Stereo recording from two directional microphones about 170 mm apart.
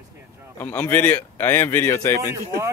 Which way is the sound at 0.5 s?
10° left (ahead or behind).